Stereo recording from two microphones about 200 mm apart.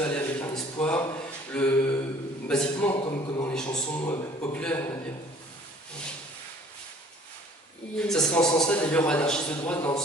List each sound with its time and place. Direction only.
0.0 s a sound: 5° left (ahead or behind)
2.4 s a man's voice: 5° left (ahead or behind)
2.9 s a man's voice: 25° left (ahead or behind)
3.4 s a man's voice: 5° left (ahead or behind)
8.0 s a man's voice: 5° left (ahead or behind)